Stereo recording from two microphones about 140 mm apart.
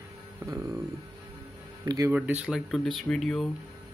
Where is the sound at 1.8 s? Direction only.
25° right (ahead or behind).